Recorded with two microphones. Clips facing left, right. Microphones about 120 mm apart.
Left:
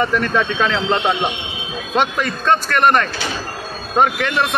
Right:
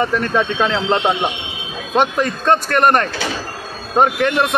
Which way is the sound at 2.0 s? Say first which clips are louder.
Right 2 dB; 35° right (ahead or behind).